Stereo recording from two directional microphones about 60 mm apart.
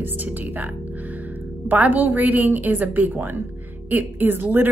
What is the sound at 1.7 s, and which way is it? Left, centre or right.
A woman's voice, right.